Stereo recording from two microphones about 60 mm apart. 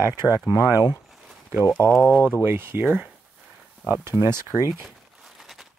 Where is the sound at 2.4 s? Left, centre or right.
Right.